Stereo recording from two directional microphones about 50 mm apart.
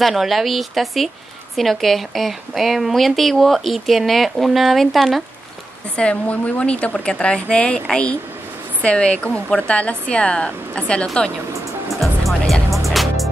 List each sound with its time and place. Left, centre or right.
0.0 s speech: centre
5.9 s a woman's voice: left
12.0 s music: centre